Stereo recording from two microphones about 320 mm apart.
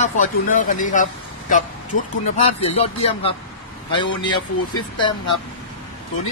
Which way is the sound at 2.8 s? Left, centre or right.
Centre.